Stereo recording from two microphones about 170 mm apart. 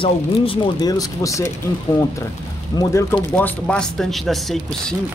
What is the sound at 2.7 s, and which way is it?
Speech, 25° left (ahead or behind).